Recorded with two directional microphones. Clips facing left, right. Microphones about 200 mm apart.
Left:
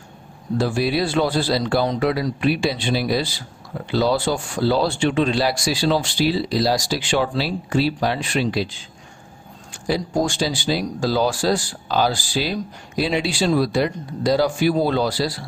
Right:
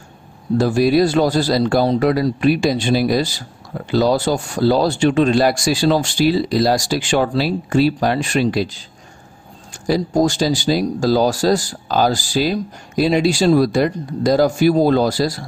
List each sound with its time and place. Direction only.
0.6 s speech: 40° right (ahead or behind)